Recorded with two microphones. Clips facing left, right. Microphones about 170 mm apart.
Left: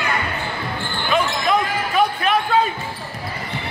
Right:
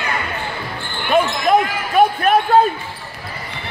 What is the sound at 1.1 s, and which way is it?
Basketball bounce, 50° right (ahead or behind).